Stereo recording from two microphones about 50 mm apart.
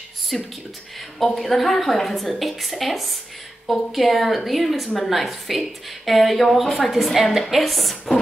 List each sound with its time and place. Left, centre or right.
0.3 s a woman's voice: centre